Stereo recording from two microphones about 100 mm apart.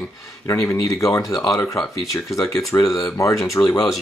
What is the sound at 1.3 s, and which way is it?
Speech, centre (ahead or behind).